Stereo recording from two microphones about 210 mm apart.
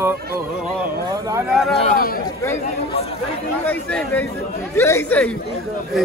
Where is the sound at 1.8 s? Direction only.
40° left (ahead or behind).